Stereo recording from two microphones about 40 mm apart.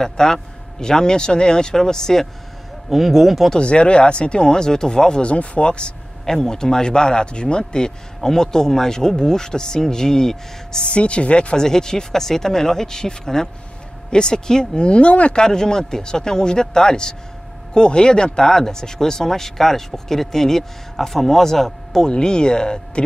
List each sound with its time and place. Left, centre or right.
0.0 s speech: centre
2.9 s speech: centre
3.5 s speech: left
5.2 s speech: left
6.2 s speech: centre; by 11.5 s left
11.5 s speech: centre; by 15.4 s left
15.4 s speech: centre
22.1 s speech: centre